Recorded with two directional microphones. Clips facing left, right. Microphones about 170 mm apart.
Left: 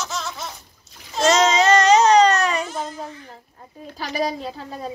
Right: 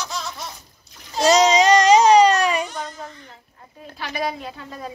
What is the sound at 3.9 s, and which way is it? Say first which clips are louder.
A woman's voice: left 2 dB; 40° left (ahead or behind).